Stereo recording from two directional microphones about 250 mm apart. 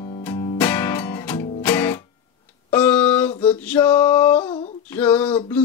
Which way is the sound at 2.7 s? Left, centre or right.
Centre.